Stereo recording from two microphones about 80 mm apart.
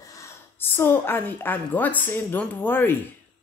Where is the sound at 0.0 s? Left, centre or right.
Left.